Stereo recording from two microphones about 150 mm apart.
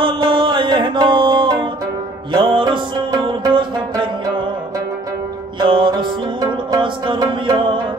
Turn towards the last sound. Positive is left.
turn(degrees=-30)  # may be behind; listen again after turning